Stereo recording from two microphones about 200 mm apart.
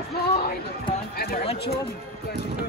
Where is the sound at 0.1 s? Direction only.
50° left (ahead or behind).